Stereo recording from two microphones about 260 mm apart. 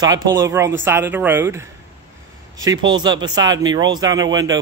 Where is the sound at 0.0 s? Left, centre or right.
Centre.